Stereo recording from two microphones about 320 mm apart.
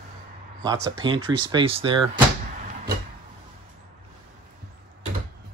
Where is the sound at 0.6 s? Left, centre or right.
Centre.